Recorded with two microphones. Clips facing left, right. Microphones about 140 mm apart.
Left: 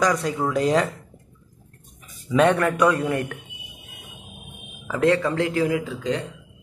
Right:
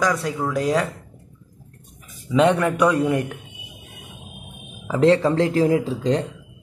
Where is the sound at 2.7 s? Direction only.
10° right (ahead or behind).